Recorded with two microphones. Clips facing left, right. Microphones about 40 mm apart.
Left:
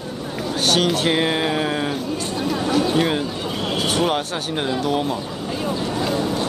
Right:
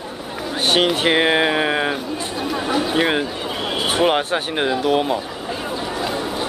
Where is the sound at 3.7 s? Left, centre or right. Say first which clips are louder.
Right 3 dB; centre.